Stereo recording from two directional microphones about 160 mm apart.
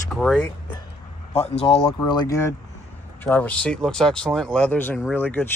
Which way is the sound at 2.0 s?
25° left (ahead or behind).